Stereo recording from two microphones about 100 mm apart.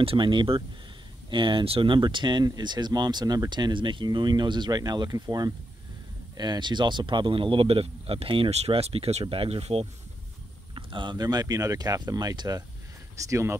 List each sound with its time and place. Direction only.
0.0 s speech: 60° right (ahead or behind); by 9.8 s 80° right
10.7 s speech: 55° right (ahead or behind); by 13.6 s 30° right (ahead or behind)